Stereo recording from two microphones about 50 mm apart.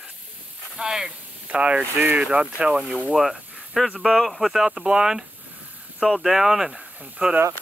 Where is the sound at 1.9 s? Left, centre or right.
Right.